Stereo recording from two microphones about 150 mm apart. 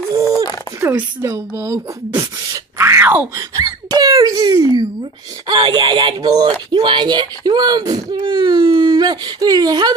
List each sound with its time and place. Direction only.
0.1 s a sound: 20° right (ahead or behind)
0.7 s speech: 15° right (ahead or behind)
3.3 s speech: 25° right (ahead or behind)